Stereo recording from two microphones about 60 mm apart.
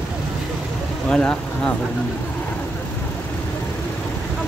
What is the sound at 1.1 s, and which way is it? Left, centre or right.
Speech, centre.